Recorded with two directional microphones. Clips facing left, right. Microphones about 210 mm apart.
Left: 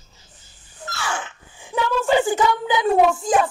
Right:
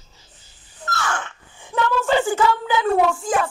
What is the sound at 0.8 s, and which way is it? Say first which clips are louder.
Speech: right 2 dB; 10° left (ahead or behind).